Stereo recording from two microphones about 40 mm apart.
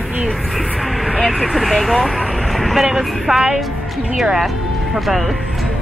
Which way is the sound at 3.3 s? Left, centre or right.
Right.